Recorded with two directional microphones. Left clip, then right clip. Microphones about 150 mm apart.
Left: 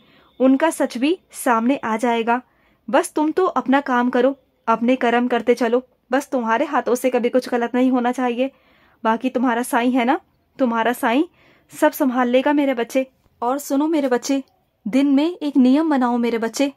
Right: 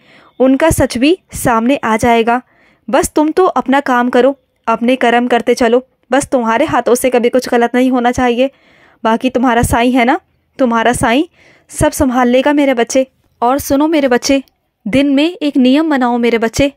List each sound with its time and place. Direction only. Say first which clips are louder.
0.1 s a woman's voice: right 6 dB; 30° right (ahead or behind)